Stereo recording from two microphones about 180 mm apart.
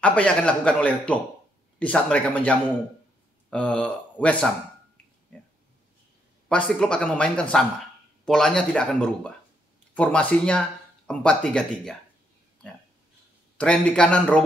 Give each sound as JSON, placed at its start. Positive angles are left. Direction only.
{"t": 0.0, "sound": "speech", "side_deg": 5}
{"t": 5.3, "sound": "a sound", "side_deg": 5}
{"t": 6.5, "sound": "speech", "side_deg": 5}
{"t": 13.6, "sound": "speech", "side_deg": 5}